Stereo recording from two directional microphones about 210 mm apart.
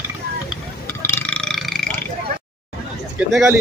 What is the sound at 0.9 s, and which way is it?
Burping, 10° left (ahead or behind).